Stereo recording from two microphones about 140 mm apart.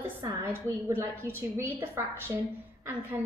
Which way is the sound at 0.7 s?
15° right (ahead or behind).